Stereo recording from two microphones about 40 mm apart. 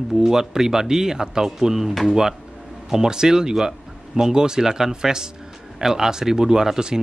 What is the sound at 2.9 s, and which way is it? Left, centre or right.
Speech, centre.